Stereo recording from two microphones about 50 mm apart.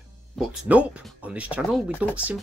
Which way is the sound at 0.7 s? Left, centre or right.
Right.